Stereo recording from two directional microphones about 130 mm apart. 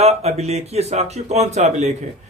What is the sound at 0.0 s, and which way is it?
Speech, 50° right (ahead or behind).